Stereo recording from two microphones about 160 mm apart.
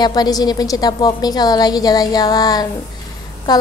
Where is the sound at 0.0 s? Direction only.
25° left (ahead or behind).